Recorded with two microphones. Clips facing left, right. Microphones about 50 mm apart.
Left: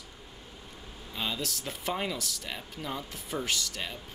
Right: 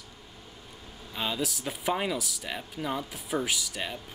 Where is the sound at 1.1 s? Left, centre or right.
Centre.